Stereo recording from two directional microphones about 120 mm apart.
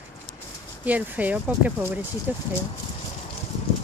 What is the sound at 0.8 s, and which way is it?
Speech, 10° right (ahead or behind).